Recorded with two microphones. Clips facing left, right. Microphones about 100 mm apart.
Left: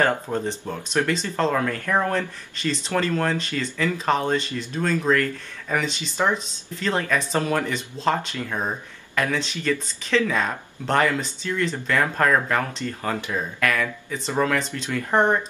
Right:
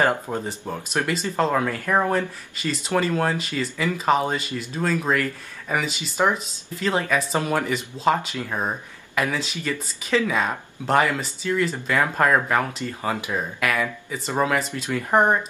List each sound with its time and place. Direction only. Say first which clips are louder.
0.0 s speech: even; 10° right (ahead or behind)